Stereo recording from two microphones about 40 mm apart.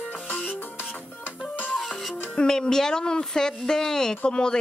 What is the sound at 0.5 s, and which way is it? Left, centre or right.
Music, left.